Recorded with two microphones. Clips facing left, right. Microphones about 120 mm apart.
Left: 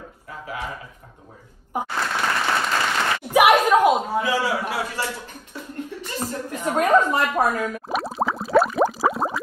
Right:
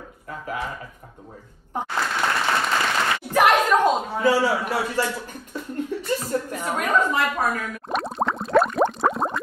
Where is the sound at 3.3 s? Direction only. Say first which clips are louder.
Left 2 dB; 10° left (ahead or behind).